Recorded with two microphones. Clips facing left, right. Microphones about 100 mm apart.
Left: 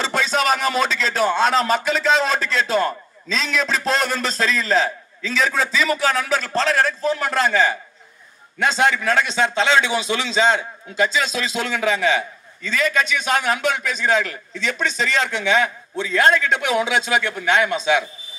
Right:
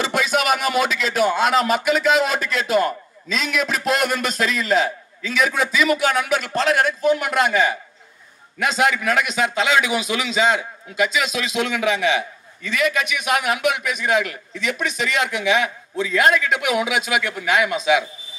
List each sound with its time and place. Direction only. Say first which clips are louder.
0.0 s speech: even; 30° left (ahead or behind)